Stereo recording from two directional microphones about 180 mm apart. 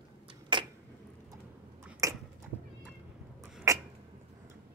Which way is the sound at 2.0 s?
20° right (ahead or behind).